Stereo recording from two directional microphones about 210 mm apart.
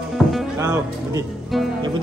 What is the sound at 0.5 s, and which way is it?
Speech, 15° right (ahead or behind).